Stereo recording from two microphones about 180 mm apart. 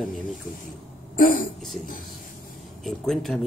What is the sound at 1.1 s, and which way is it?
Speech, 50° left (ahead or behind).